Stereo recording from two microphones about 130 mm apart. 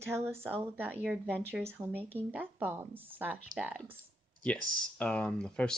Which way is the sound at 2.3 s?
15° right (ahead or behind).